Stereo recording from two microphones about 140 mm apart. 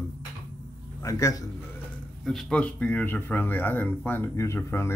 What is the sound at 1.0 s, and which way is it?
Speech, 20° left (ahead or behind).